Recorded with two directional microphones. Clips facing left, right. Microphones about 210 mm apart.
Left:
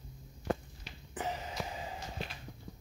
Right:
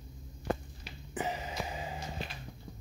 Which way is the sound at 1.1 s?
5° right (ahead or behind).